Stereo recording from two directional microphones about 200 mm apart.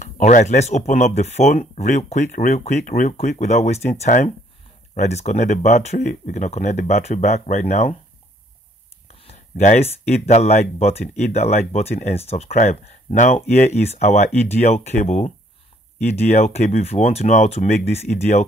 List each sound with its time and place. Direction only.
0.0 s speech: 35° left (ahead or behind)
9.0 s speech: 35° left (ahead or behind)